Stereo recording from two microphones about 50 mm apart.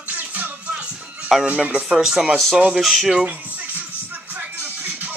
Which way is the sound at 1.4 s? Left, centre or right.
Right.